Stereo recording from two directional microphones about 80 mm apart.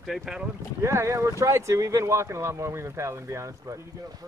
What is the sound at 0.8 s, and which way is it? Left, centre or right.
Speech, right.